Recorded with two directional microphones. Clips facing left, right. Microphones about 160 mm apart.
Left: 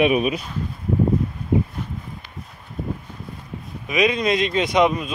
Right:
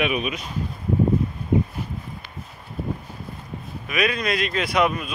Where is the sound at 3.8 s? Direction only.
20° left (ahead or behind).